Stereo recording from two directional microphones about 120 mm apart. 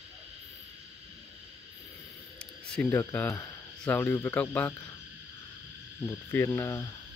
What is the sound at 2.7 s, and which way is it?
Speech, 10° left (ahead or behind).